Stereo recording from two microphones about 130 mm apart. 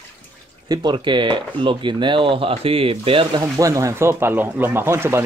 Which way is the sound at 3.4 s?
25° right (ahead or behind).